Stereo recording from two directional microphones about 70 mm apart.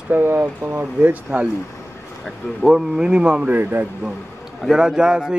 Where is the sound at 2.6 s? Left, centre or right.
Centre; by 3.9 s right.